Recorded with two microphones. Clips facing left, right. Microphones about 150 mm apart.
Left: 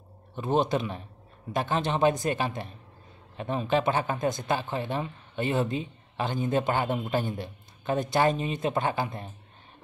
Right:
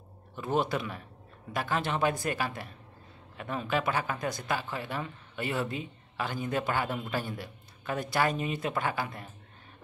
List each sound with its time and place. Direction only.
0.4 s speech: 20° left (ahead or behind)